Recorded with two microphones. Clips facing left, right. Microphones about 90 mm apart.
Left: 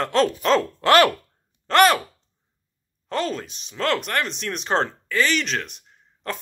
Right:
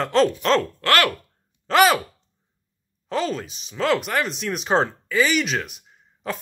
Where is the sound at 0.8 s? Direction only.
20° left (ahead or behind).